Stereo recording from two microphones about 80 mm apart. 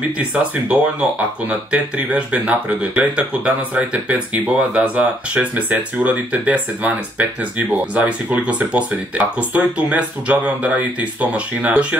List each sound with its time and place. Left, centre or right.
0.2 s speech: centre